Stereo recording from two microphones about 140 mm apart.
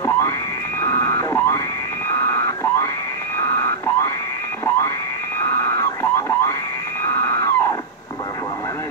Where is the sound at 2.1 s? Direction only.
20° left (ahead or behind).